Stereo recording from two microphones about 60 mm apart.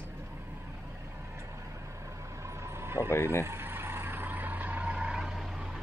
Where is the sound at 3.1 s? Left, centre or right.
Left.